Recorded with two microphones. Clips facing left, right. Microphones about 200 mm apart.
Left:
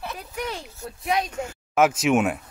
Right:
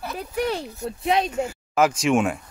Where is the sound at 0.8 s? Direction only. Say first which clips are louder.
Right 2 dB; 25° right (ahead or behind).